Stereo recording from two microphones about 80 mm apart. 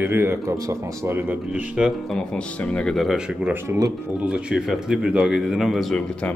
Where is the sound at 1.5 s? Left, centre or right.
Centre.